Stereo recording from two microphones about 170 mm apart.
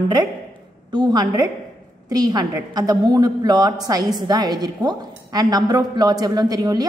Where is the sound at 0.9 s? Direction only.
25° right (ahead or behind).